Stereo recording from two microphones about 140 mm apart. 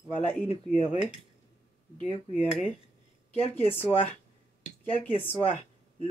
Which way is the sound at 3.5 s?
15° left (ahead or behind).